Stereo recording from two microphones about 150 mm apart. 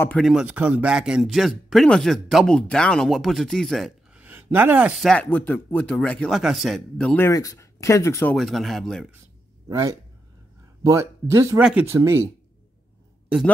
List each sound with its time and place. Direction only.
0.2 s speech: 5° right (ahead or behind)
5.0 s a man's voice: 10° left (ahead or behind)
7.2 s speech: 20° left (ahead or behind)
8.4 s speech: centre (ahead or behind)
9.7 s a man's voice: 20° right (ahead or behind)